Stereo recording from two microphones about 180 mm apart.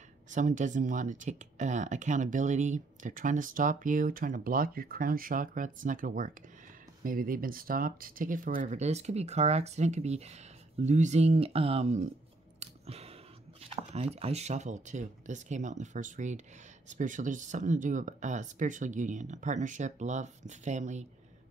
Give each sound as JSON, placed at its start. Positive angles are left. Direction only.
{"t": 0.3, "sound": "speech", "side_deg": -45}
{"t": 12.5, "sound": "a sound", "side_deg": -35}
{"t": 13.6, "sound": "speech", "side_deg": -35}